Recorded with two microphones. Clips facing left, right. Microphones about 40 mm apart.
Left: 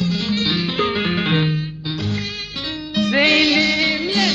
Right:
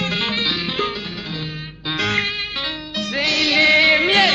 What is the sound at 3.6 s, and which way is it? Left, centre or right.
Music, right.